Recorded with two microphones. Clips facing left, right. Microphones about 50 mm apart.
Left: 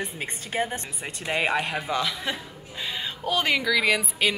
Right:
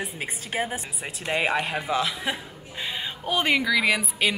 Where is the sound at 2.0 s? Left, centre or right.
Centre.